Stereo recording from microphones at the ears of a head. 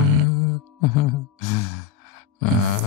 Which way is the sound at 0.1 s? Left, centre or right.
Left.